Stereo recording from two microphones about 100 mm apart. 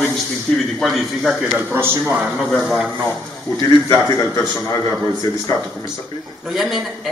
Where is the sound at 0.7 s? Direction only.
Centre (ahead or behind).